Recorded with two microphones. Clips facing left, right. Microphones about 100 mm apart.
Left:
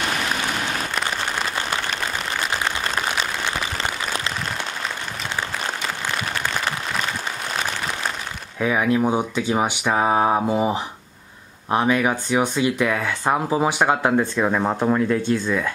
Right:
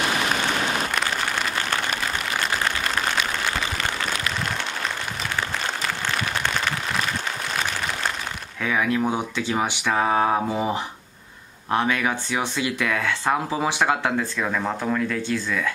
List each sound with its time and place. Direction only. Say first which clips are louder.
8.5 s speech: left 4 dB; 20° left (ahead or behind)